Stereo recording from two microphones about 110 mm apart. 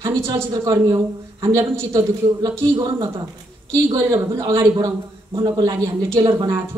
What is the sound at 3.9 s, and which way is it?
A woman's voice, 25° right (ahead or behind).